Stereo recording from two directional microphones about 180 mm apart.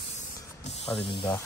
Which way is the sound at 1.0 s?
30° left (ahead or behind).